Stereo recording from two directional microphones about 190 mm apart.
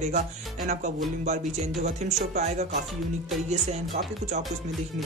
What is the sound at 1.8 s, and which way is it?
Speech, 35° right (ahead or behind).